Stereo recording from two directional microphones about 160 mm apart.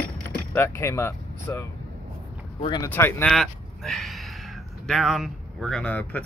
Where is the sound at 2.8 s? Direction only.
15° left (ahead or behind).